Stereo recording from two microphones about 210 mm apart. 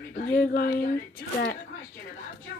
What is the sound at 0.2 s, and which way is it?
Speech, 45° left (ahead or behind).